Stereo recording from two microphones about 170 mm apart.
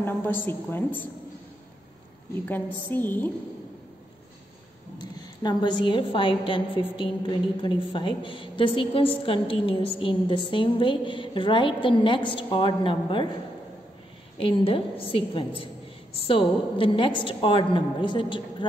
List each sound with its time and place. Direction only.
0.0 s a woman's voice: 10° left (ahead or behind)
2.4 s a woman's voice: 10° left (ahead or behind)
5.1 s a woman's voice: 25° left (ahead or behind)
14.4 s a woman's voice: 30° left (ahead or behind)